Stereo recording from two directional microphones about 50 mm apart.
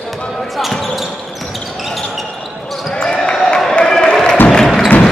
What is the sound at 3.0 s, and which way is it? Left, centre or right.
Basketball bounce, centre.